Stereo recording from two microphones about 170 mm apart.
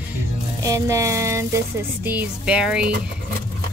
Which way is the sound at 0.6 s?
20° right (ahead or behind).